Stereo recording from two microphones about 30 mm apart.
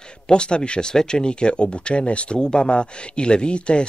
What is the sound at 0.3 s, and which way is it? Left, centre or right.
Speech, left.